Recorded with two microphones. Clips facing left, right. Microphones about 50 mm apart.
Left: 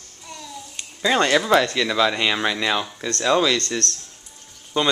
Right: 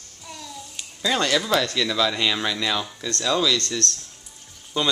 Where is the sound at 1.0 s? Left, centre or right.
Left.